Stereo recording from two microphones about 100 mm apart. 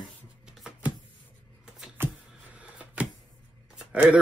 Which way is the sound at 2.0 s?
25° right (ahead or behind).